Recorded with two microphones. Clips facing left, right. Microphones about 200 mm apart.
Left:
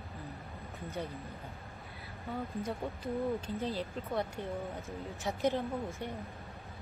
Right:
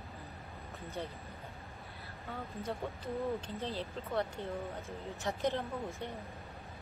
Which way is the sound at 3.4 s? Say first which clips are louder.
Left 3 dB; 10° left (ahead or behind).